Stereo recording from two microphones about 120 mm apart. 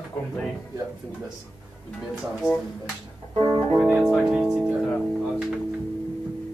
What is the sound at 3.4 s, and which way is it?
Music, 25° right (ahead or behind).